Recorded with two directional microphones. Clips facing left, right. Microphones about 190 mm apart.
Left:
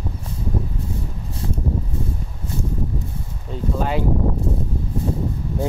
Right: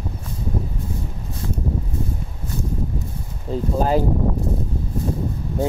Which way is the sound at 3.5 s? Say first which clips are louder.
Right 4 dB; 35° right (ahead or behind).